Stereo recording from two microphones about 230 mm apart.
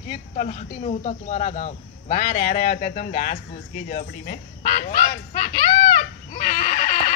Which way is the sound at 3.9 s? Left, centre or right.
Left.